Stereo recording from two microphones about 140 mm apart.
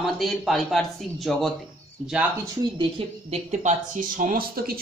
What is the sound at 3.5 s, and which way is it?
Speech, 60° right (ahead or behind).